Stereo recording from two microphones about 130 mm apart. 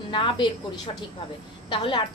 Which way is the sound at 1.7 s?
40° left (ahead or behind).